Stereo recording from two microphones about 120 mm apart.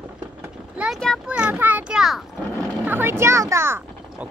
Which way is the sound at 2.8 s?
15° right (ahead or behind).